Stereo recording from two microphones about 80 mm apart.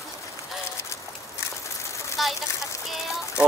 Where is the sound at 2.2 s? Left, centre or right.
Centre.